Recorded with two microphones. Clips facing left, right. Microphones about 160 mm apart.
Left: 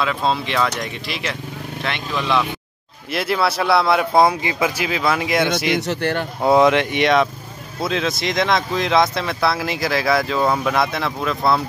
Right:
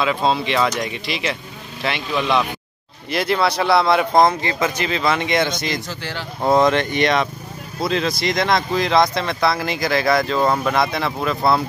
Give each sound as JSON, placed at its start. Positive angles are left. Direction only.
{"t": 0.0, "sound": "speech", "side_deg": 0}
{"t": 5.8, "sound": "speech", "side_deg": 60}
{"t": 6.4, "sound": "speech", "side_deg": 5}